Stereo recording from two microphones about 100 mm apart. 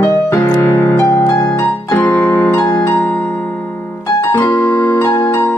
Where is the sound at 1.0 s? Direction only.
25° left (ahead or behind).